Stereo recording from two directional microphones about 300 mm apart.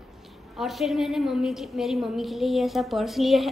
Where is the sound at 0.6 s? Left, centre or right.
Centre.